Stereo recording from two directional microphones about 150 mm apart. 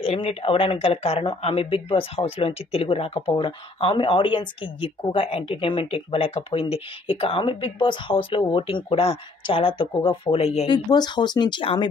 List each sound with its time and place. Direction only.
0.0 s speech: 40° left (ahead or behind)
10.7 s speech: 30° left (ahead or behind)